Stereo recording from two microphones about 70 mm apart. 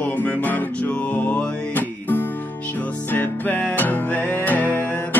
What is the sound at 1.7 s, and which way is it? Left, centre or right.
Music, left.